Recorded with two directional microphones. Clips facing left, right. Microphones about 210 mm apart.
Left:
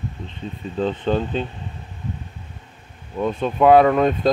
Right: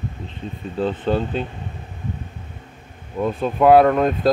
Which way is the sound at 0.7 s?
5° right (ahead or behind).